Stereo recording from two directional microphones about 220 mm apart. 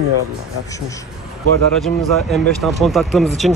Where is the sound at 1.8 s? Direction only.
Centre (ahead or behind).